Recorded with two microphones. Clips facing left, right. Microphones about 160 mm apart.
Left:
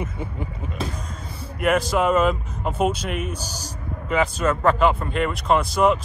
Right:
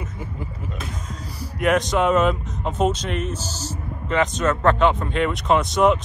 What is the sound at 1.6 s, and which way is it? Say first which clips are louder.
Speech: right 1 dB; 5° left (ahead or behind).